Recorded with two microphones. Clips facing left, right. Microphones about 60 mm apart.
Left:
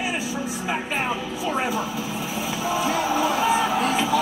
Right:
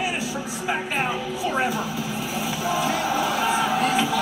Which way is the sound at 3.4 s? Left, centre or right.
Left.